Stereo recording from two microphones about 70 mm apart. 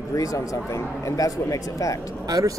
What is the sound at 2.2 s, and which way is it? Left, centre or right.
Speech, right.